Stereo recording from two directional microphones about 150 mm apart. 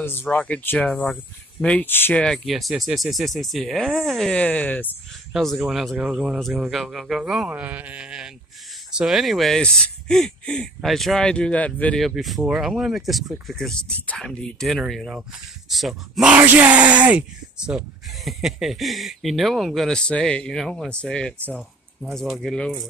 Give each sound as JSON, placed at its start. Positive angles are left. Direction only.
{"t": 0.0, "sound": "speech", "side_deg": 15}